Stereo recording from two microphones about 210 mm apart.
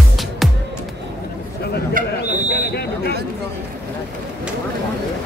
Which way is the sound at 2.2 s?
45° left (ahead or behind).